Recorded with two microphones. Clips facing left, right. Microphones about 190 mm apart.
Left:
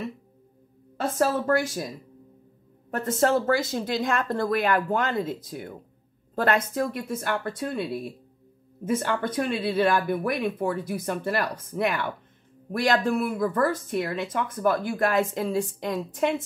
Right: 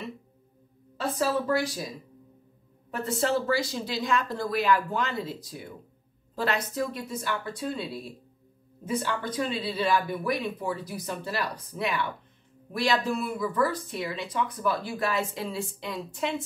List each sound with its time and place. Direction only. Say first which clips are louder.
1.1 s speech: left 3 dB; 50° left (ahead or behind)
3.0 s speech: left 4 dB; 45° left (ahead or behind)